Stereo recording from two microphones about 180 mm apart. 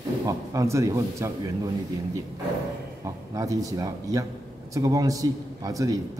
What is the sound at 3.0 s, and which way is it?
A man's voice, 20° right (ahead or behind).